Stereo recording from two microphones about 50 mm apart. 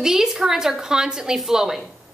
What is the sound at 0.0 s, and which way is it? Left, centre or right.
A woman's voice, centre.